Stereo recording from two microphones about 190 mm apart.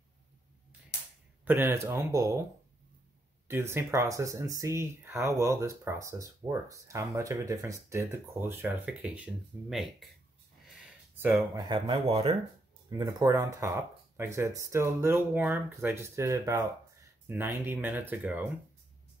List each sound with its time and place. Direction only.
1.4 s speech: 10° right (ahead or behind)
3.4 s speech: 15° right (ahead or behind)
11.1 s speech: 10° right (ahead or behind)
11.5 s speech: 20° right (ahead or behind)
12.9 s speech: 15° right (ahead or behind)